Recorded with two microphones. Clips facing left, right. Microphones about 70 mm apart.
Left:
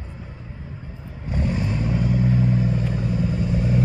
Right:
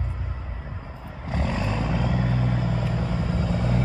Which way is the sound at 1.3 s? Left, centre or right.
Right.